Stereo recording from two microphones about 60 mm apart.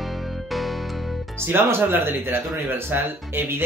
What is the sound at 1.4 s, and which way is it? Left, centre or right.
Speech, right.